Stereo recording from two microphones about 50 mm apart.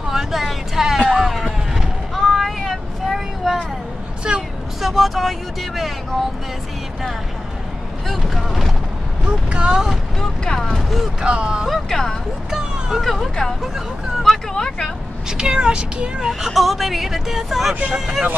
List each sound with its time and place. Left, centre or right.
0.1 s a sound: centre
1.1 s vehicle: centre
4.2 s a sound: centre
4.8 s speech: centre
8.1 s speech: centre
9.2 s speech: right
10.4 s speech: centre
11.1 s speech: centre
11.9 s speech: centre
12.4 s vehicle: centre
13.0 s speech: centre
14.5 s speech: centre
15.2 s speech: centre
16.3 s speech: centre